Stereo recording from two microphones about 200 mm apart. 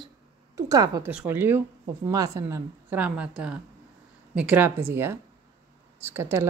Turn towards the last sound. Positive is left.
turn(degrees=-10)  # may be behind; listen again after turning